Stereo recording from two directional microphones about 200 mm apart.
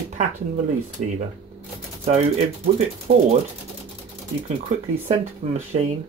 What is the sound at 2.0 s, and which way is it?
Speech, 30° right (ahead or behind).